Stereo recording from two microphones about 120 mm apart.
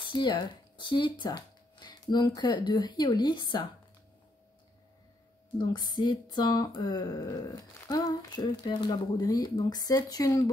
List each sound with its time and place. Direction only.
0.0 s speech: 40° left (ahead or behind)
5.6 s speech: 40° left (ahead or behind)